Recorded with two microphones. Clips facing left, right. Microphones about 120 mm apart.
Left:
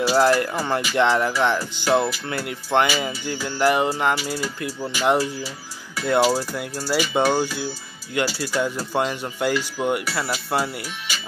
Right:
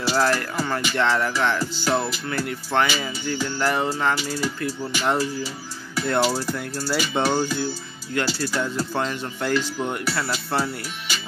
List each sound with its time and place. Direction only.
0.1 s speech: 20° left (ahead or behind)